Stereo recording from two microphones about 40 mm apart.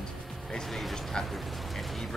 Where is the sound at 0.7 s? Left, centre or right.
Centre.